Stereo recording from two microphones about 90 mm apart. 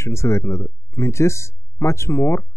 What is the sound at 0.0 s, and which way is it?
Speech, 30° left (ahead or behind).